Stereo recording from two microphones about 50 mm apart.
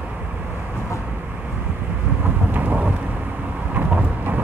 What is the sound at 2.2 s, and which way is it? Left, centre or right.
Thunder, right.